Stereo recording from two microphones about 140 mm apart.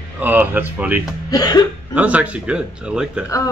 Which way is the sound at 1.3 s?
30° left (ahead or behind).